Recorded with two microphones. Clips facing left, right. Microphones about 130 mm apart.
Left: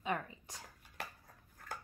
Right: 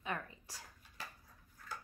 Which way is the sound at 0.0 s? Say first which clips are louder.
Left 4 dB; 20° left (ahead or behind).